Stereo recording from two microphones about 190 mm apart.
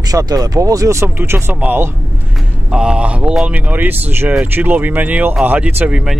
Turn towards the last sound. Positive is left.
turn(degrees=-10)  # may be behind; listen again after turning